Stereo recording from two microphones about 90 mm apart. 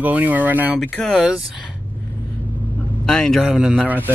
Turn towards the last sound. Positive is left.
turn(degrees=-5)  # may be behind; listen again after turning